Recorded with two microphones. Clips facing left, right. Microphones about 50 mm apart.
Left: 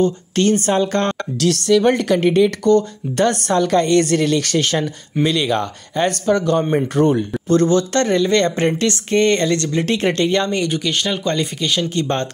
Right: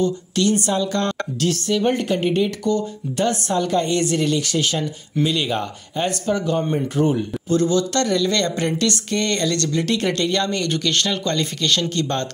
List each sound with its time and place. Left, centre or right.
0.0 s speech: left
1.4 s a woman's voice: left
2.7 s speech: left
5.2 s speech: left
10.7 s speech: centre